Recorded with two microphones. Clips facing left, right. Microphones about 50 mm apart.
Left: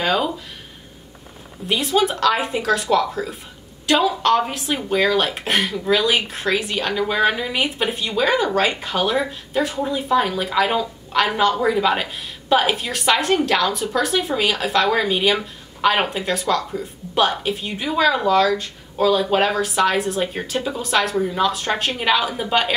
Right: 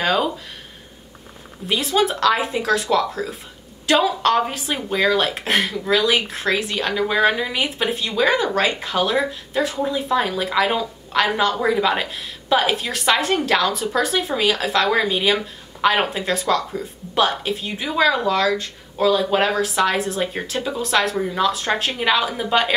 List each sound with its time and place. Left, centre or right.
0.0 s speech: centre
1.7 s a woman's voice: centre